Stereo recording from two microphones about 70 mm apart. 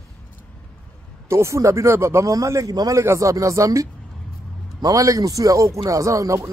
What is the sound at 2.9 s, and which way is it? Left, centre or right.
Speech, right.